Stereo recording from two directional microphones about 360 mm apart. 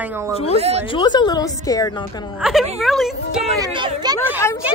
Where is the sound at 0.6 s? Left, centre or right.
Centre.